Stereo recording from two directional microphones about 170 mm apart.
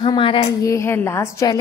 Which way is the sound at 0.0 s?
30° left (ahead or behind).